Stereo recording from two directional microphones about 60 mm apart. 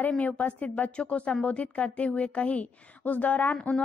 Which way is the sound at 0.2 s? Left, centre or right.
Left.